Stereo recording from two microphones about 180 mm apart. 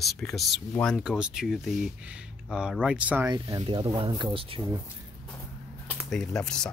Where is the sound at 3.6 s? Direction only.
30° right (ahead or behind).